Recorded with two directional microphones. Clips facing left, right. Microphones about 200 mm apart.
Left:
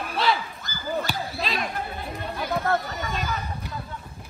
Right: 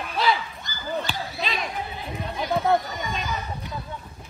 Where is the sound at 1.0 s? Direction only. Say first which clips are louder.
Left 1 dB; centre (ahead or behind).